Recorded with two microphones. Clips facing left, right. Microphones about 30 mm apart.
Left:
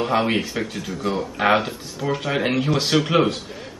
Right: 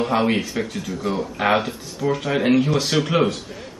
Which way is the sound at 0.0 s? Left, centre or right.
Centre.